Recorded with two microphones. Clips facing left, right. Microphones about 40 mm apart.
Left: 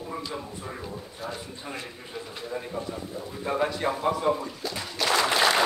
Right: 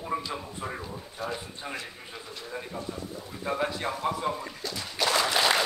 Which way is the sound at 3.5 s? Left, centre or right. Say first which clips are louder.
Left 3 dB; centre.